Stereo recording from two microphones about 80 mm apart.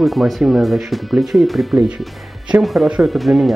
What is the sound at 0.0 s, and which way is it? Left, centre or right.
Speech, centre.